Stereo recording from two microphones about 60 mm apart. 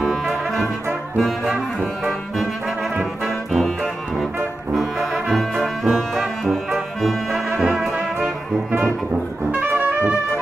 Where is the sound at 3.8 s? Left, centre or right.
Centre.